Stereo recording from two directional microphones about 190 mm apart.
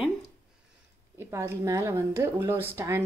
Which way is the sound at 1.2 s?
15° right (ahead or behind).